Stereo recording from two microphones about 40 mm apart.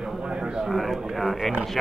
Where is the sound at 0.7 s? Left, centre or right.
Centre.